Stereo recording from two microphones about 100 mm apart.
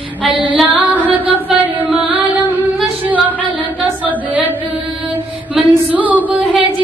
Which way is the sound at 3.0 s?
15° right (ahead or behind).